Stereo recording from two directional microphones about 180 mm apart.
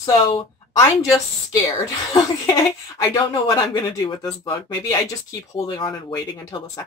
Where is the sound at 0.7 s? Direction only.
20° left (ahead or behind).